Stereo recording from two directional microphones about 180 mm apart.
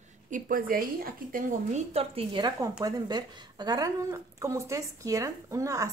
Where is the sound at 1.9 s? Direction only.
30° right (ahead or behind).